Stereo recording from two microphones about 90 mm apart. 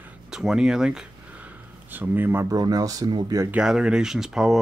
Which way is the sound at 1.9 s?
20° right (ahead or behind).